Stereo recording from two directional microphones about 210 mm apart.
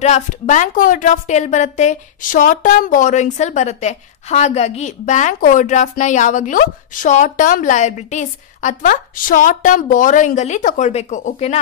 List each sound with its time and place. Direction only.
0.0 s a woman's voice: 35° left (ahead or behind)